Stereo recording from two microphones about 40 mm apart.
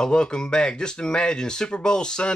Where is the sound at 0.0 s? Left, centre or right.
Left.